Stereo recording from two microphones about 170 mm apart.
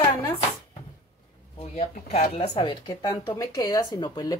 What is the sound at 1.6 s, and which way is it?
Speech, 40° left (ahead or behind).